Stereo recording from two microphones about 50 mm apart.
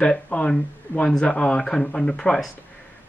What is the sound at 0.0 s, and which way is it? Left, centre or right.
Speech, left.